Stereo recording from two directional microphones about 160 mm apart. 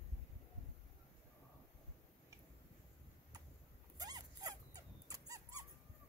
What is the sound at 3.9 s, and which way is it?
Dog, 25° right (ahead or behind).